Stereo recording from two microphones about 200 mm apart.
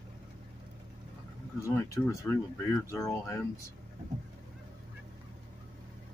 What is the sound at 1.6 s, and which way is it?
Speech, 15° left (ahead or behind).